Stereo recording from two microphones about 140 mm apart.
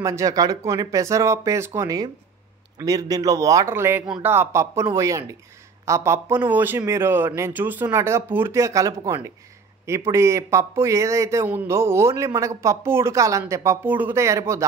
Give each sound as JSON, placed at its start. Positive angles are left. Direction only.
{"t": 0.0, "sound": "a man's voice", "side_deg": -25}